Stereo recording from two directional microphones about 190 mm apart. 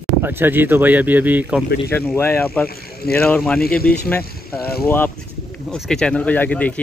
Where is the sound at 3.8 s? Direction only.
55° left (ahead or behind).